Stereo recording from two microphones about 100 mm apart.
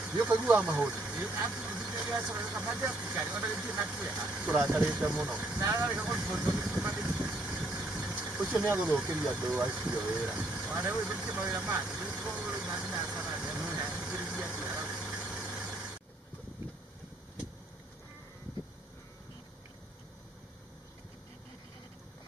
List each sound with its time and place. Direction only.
0.0 s speech: 10° right (ahead or behind)
5.6 s speech: 25° right (ahead or behind)
5.9 s speech: 10° right (ahead or behind)
6.3 s speech: 15° right (ahead or behind)
7.1 s vehicle: 5° right (ahead or behind)
8.8 s speech: 10° right (ahead or behind)
13.1 s vehicle: 5° right (ahead or behind)